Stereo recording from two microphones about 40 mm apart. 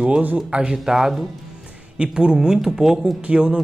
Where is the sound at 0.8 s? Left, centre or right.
Centre.